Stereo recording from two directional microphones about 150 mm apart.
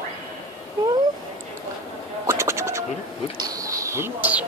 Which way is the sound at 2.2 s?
20° right (ahead or behind).